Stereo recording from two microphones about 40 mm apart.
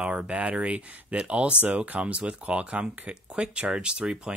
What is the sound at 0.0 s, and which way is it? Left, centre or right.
Speech, right.